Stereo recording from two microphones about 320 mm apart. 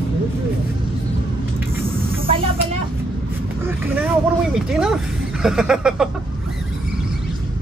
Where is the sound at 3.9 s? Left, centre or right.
Centre.